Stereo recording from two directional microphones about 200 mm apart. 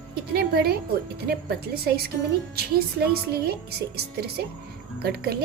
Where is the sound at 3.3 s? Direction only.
50° right (ahead or behind).